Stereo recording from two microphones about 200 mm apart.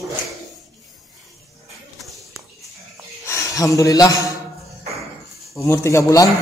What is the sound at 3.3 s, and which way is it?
Speech, 15° left (ahead or behind).